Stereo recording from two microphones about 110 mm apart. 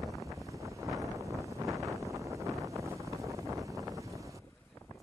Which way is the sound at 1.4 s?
30° right (ahead or behind).